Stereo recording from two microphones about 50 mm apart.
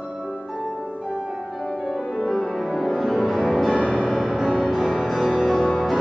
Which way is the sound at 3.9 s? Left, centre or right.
Centre.